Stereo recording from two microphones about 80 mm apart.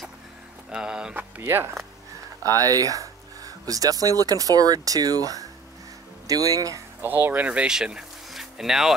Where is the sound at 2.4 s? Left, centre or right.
Right.